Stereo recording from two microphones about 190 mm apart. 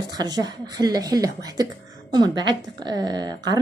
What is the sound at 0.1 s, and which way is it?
A woman's voice, 20° right (ahead or behind).